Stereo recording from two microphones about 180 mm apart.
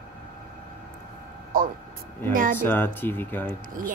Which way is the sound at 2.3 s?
50° right (ahead or behind).